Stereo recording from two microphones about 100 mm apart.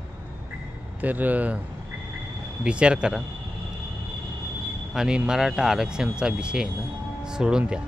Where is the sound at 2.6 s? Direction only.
10° right (ahead or behind).